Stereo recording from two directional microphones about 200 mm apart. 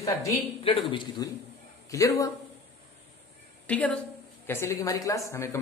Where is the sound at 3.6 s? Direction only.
5° left (ahead or behind).